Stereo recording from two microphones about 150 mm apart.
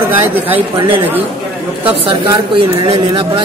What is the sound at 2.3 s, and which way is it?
A man's voice, 35° right (ahead or behind).